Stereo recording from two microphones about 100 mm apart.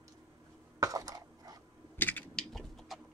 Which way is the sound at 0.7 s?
35° right (ahead or behind).